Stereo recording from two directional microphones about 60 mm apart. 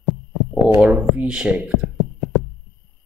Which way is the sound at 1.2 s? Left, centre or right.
Centre.